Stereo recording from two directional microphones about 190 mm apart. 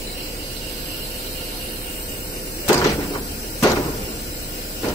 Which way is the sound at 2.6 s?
15° left (ahead or behind).